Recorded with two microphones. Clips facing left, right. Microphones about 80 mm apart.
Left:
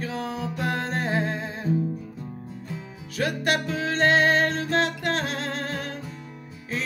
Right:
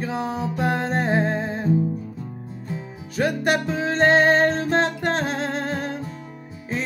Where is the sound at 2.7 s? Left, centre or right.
Right.